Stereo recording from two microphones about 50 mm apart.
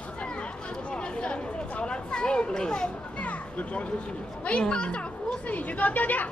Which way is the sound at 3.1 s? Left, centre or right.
Left.